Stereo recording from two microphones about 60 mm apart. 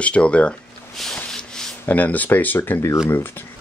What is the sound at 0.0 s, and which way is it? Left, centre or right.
Speech, centre.